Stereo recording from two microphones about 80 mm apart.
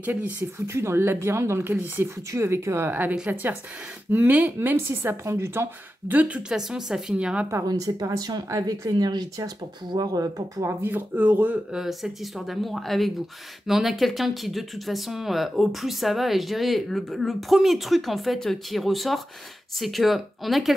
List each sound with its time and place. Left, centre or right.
0.0 s speech: right
0.7 s speech: right
2.3 s speech: right
2.9 s speech: right
6.1 s a woman's voice: centre
6.5 s a woman's voice: centre
7.6 s a woman's voice: right
8.9 s speech: right
9.9 s a woman's voice: right
10.8 s speech: right
11.7 s speech: centre